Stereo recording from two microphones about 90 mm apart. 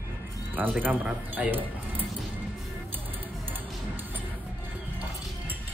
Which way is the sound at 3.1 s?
20° right (ahead or behind).